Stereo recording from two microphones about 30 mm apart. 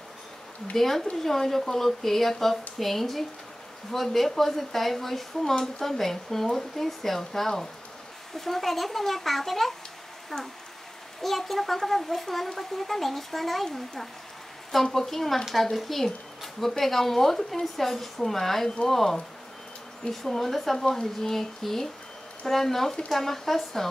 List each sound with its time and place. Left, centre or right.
0.7 s a child's voice: centre
14.7 s a child's voice: centre
20.0 s speech: left
20.3 s speech: centre